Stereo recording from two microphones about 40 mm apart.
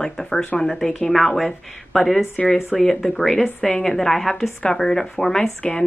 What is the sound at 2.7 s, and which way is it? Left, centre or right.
Speech, centre.